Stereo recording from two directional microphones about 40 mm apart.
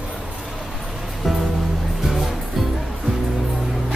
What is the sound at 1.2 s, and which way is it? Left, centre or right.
Music, centre.